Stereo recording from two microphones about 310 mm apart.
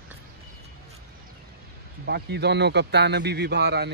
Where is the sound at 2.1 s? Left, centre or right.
Right.